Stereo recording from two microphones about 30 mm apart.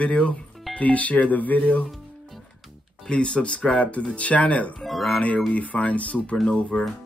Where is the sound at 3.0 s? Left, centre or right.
Left.